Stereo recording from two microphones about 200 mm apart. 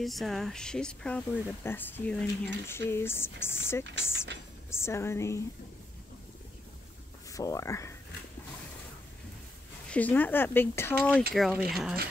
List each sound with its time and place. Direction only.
0.0 s speech: centre (ahead or behind)
7.2 s speech: 15° left (ahead or behind)
9.8 s speech: 10° left (ahead or behind)